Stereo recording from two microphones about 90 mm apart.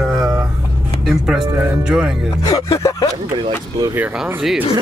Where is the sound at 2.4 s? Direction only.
40° left (ahead or behind).